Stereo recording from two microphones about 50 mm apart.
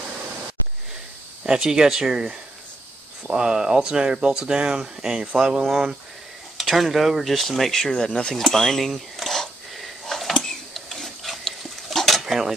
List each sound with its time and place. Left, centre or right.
1.4 s speech: centre
5.6 s speech: centre
8.4 s a sound: centre
12.2 s dishes: centre